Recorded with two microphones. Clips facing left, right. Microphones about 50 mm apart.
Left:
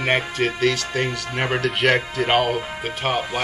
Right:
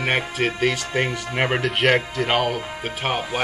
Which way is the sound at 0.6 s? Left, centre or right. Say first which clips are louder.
Even; centre.